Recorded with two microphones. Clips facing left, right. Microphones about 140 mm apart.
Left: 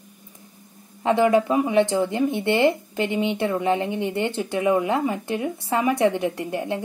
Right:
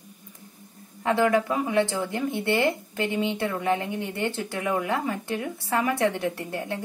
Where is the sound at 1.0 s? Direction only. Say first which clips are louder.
Left 4 dB; 20° left (ahead or behind).